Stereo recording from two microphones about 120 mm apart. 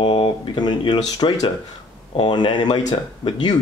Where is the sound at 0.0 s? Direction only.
50° left (ahead or behind).